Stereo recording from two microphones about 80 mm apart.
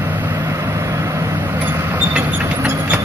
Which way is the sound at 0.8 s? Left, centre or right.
Right.